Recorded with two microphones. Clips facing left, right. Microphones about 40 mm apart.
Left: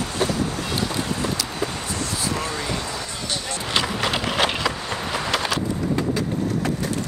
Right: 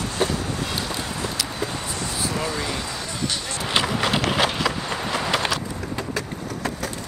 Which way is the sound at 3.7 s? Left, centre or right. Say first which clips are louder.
Right 1 dB; centre.